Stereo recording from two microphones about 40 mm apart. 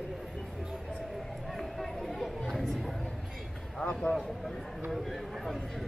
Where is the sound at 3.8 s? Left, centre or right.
Left.